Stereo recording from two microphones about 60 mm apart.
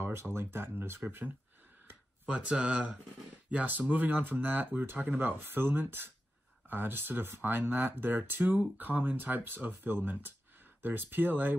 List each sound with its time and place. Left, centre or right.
0.0 s speech: right
2.3 s speech: centre
3.4 s speech: right